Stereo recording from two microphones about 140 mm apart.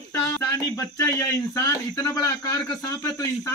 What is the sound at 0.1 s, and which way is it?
Speech, 20° left (ahead or behind).